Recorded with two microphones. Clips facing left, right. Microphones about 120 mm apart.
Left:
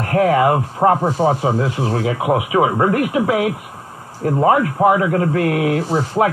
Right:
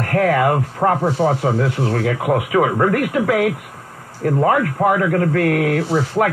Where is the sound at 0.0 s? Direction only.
25° left (ahead or behind).